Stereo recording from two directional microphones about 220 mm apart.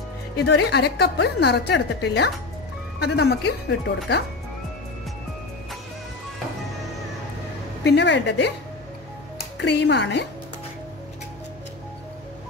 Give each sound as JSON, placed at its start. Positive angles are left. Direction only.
{"t": 0.4, "sound": "a woman's voice", "side_deg": 50}
{"t": 7.8, "sound": "a woman's voice", "side_deg": 50}
{"t": 9.6, "sound": "a woman's voice", "side_deg": 50}